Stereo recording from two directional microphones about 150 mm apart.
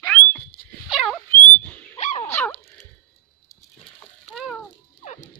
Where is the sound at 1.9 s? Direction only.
50° left (ahead or behind).